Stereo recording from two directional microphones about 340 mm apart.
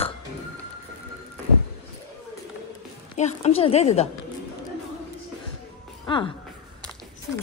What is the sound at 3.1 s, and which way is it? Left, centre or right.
Speech, centre.